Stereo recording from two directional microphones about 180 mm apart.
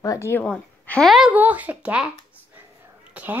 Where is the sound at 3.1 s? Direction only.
10° right (ahead or behind).